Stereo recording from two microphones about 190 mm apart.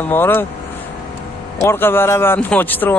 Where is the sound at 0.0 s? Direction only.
10° left (ahead or behind).